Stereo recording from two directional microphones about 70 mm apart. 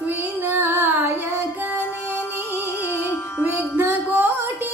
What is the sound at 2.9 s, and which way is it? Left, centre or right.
Music, right.